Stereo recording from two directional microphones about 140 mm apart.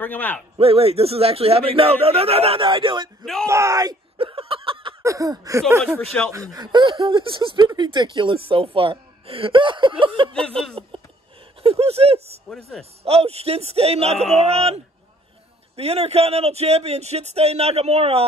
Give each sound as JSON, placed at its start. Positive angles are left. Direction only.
{"t": 0.0, "sound": "a man's voice", "side_deg": 10}
{"t": 0.6, "sound": "a man's voice", "side_deg": -45}
{"t": 3.4, "sound": "a sound", "side_deg": -20}
{"t": 4.2, "sound": "a sound", "side_deg": -40}
{"t": 5.0, "sound": "a sound", "side_deg": -25}
{"t": 6.3, "sound": "speech", "side_deg": -25}
{"t": 11.6, "sound": "a man's voice", "side_deg": -45}
{"t": 12.4, "sound": "speech", "side_deg": 5}
{"t": 13.0, "sound": "a man's voice", "side_deg": -45}